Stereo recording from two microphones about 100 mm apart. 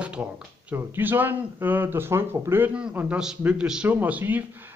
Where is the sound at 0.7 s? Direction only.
20° right (ahead or behind).